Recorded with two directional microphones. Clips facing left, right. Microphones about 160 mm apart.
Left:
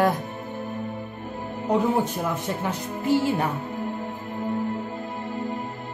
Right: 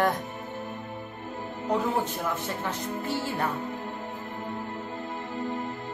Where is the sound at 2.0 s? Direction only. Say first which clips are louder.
Left 4 dB; 15° left (ahead or behind).